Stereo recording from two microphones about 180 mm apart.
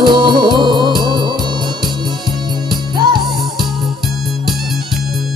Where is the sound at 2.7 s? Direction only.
25° right (ahead or behind).